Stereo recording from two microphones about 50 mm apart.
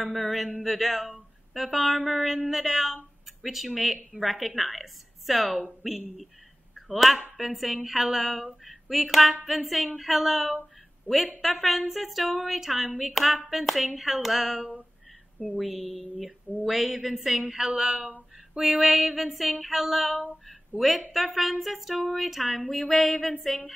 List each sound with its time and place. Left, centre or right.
0.1 s a woman's voice: centre
6.7 s a sound: centre
7.3 s speech: centre
11.1 s a woman's voice: right
11.4 s speech: centre
15.4 s speech: left
15.9 s a woman's voice: centre
18.6 s speech: centre
21.1 s speech: centre